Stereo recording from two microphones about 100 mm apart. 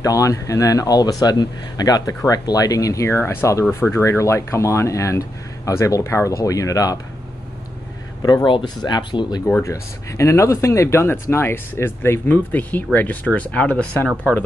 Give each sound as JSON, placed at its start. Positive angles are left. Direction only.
{"t": 0.0, "sound": "speech", "side_deg": 35}
{"t": 8.5, "sound": "speech", "side_deg": 50}
{"t": 9.6, "sound": "speech", "side_deg": 30}